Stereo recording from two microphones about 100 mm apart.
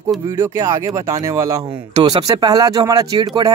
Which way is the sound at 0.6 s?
30° right (ahead or behind).